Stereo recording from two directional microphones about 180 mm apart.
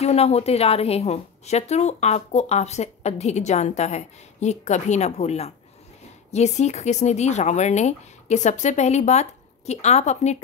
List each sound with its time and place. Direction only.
0.0 s a woman's voice: 35° left (ahead or behind)